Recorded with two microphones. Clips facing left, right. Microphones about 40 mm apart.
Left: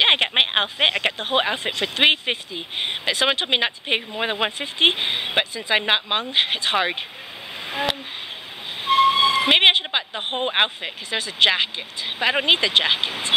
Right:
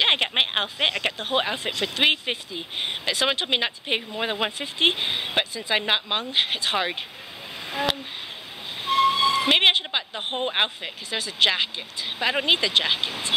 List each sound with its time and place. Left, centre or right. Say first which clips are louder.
0.0 s speech: left 3 dB; left
8.8 s speech: left 3 dB; left